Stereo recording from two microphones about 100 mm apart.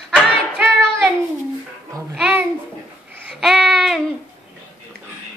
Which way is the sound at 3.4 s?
Centre (ahead or behind).